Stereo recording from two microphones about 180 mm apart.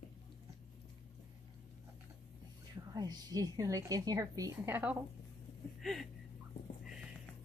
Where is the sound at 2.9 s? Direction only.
20° right (ahead or behind).